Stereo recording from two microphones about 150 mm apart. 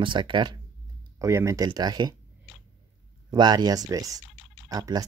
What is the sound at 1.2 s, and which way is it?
Speech, 20° right (ahead or behind).